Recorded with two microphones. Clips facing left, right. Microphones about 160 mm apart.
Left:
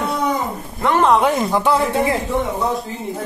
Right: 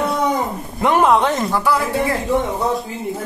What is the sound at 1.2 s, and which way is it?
Speech, 10° left (ahead or behind).